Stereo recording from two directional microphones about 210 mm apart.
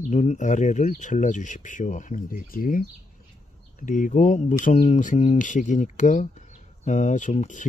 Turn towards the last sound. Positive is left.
turn(degrees=35)  # may be behind; listen again after turning